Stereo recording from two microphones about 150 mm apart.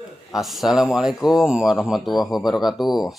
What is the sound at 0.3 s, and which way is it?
Speech, centre (ahead or behind).